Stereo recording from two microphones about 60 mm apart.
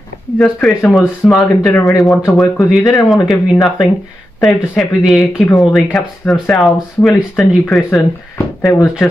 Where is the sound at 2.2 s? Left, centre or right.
Left.